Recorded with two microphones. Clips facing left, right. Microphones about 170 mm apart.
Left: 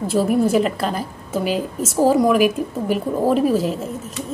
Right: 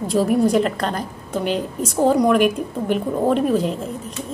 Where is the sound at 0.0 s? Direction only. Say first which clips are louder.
Even; centre (ahead or behind).